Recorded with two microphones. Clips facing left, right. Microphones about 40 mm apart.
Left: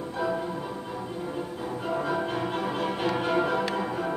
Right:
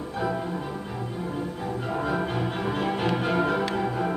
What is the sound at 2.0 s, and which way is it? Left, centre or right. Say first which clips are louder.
Music: right 1 dB; centre.